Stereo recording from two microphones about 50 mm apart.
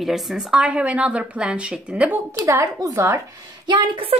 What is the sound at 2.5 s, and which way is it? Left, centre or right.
Speech, right.